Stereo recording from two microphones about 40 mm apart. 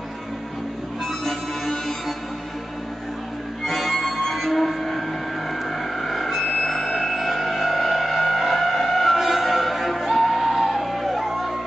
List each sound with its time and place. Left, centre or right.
1.0 s harmonica: centre
3.6 s music: centre
5.5 s a sound: centre